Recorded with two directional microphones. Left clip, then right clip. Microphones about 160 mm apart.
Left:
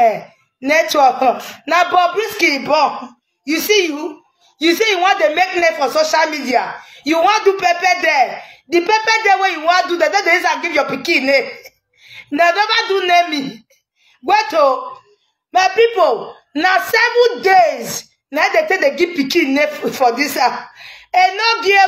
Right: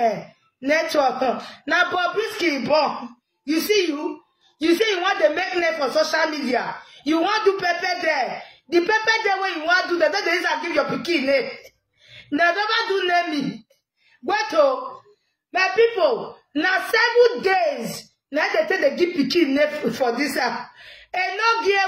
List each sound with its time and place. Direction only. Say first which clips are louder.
0.0 s speech: left 8 dB; 10° right (ahead or behind)
21.1 s child singing: left 8 dB; 20° right (ahead or behind)